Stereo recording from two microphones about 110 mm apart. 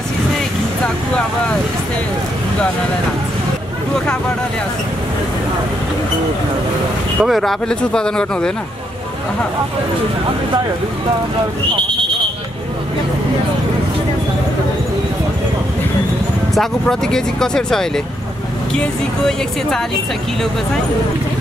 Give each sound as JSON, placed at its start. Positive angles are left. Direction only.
{"t": 7.2, "sound": "speech", "side_deg": 0}
{"t": 16.5, "sound": "speech", "side_deg": 5}